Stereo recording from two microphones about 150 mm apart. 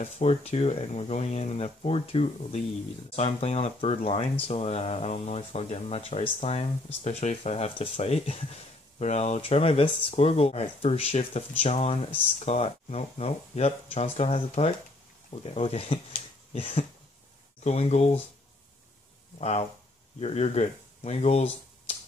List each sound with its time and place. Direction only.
0.0 s speech: 45° left (ahead or behind)
16.5 s a sound: 40° left (ahead or behind)
17.6 s speech: 45° left (ahead or behind)
19.3 s speech: 45° left (ahead or behind)